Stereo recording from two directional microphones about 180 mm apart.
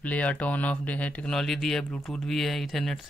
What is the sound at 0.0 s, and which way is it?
Speech, 10° left (ahead or behind).